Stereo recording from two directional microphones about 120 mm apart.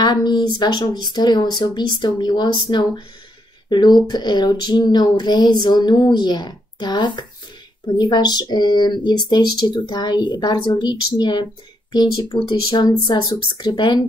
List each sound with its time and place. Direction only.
0.0 s speech: 35° left (ahead or behind)